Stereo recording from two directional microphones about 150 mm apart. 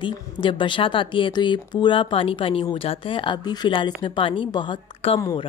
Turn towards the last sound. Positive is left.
turn(degrees=40)  # may be behind; listen again after turning